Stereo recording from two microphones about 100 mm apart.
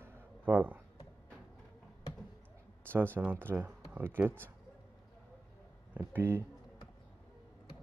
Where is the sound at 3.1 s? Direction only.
20° right (ahead or behind).